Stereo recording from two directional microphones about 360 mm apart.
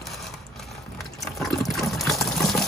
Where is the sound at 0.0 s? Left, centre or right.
Centre.